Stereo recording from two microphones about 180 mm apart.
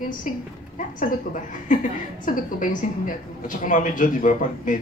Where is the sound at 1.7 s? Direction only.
45° left (ahead or behind).